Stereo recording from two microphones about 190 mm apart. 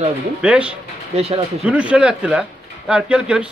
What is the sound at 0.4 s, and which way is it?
Speech, 5° right (ahead or behind).